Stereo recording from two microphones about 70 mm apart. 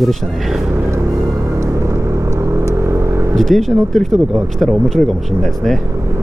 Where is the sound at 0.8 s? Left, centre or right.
Right.